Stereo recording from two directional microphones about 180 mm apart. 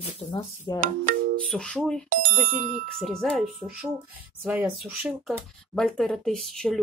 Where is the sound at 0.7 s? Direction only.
45° right (ahead or behind).